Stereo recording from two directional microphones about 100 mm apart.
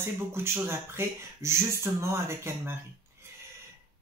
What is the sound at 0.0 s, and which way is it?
Speech, 25° right (ahead or behind).